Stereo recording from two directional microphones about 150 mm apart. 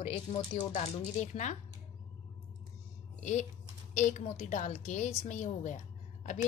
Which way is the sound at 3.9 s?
55° left (ahead or behind).